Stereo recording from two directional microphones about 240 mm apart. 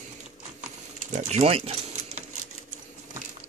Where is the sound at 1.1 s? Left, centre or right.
Right.